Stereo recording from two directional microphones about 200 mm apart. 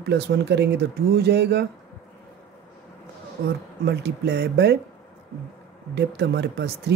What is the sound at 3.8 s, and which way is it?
Speech, 55° right (ahead or behind).